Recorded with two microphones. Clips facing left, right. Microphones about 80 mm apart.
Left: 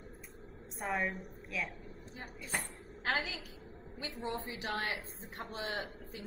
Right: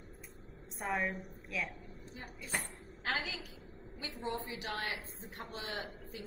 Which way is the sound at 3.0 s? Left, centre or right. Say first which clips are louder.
Left 2 dB; left.